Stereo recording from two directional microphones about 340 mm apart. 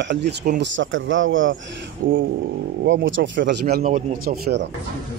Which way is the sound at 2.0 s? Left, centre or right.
Right.